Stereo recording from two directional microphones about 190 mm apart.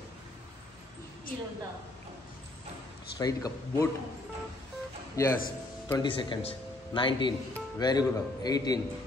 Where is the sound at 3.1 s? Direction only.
20° left (ahead or behind).